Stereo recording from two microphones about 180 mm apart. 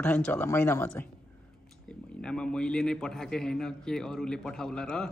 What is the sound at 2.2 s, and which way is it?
A man's voice, 5° left (ahead or behind).